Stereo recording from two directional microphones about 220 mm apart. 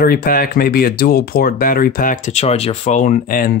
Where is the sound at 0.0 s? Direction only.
45° left (ahead or behind).